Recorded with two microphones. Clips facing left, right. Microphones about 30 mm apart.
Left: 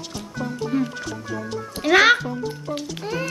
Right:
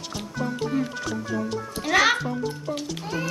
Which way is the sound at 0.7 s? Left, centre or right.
Centre.